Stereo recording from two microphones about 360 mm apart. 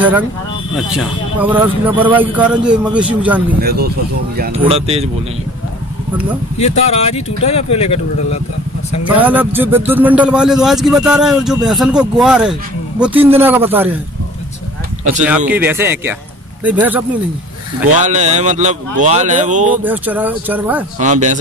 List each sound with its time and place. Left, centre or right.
0.7 s a man's voice: centre
3.6 s speech: right
6.6 s speech: centre
9.0 s a man's voice: centre
15.2 s a man's voice: centre
17.9 s speech: centre
19.8 s a man's voice: centre
21.0 s speech: centre